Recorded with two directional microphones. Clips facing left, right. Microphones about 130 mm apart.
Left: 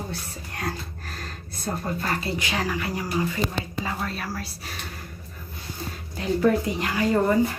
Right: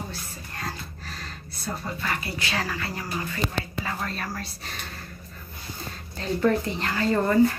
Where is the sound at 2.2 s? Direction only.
20° left (ahead or behind).